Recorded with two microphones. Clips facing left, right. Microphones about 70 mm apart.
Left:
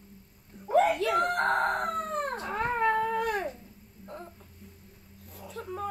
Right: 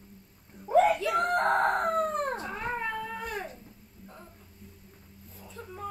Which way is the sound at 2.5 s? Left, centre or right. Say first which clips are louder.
Left 6 dB; left.